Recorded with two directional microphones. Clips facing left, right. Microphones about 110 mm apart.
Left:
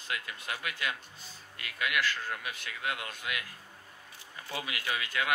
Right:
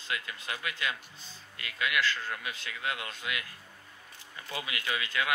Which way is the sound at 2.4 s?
25° right (ahead or behind).